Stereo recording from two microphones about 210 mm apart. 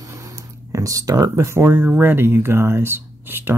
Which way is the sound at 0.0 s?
15° right (ahead or behind).